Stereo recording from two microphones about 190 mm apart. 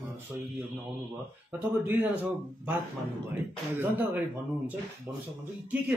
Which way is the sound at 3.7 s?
10° right (ahead or behind).